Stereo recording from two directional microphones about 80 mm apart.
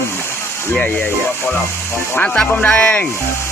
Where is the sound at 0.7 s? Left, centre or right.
Left.